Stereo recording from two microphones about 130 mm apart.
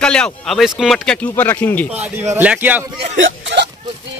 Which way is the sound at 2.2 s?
15° right (ahead or behind).